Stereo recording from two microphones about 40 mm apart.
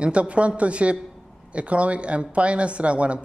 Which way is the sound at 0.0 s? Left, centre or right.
Right.